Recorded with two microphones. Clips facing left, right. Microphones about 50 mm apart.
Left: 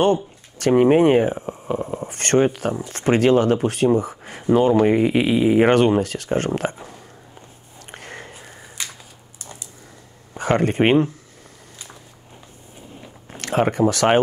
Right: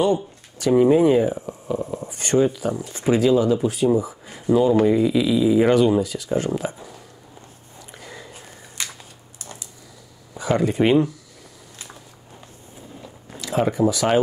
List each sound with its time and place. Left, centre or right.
0.0 s speech: left
1.5 s speech: left
2.0 s speech: left
7.9 s a sound: left
10.3 s speech: left
13.4 s speech: left